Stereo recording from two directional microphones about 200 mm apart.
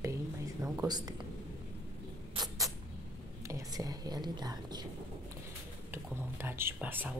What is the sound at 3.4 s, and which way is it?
Speech, 15° right (ahead or behind).